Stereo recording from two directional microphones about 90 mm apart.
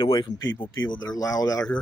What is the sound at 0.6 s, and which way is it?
Speech, 55° left (ahead or behind).